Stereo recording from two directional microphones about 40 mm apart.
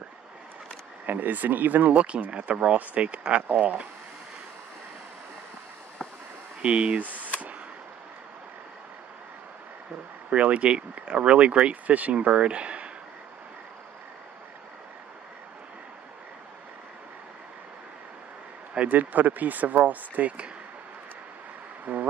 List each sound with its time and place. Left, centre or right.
1.0 s speech: right
2.0 s speech: right
3.4 s speech: right
6.6 s speech: right
7.0 s speech: right
10.3 s speech: right
18.9 s speech: right
21.9 s speech: right